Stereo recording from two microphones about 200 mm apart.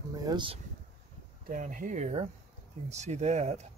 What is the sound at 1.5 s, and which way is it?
Speech, 40° right (ahead or behind).